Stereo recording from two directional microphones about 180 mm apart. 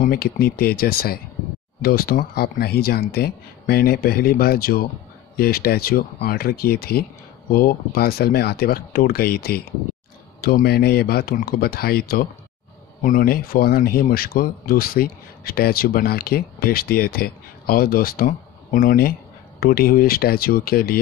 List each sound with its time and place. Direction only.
0.0 s speech: 55° left (ahead or behind)